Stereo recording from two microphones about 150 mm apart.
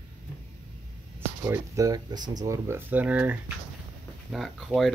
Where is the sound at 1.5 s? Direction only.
25° right (ahead or behind).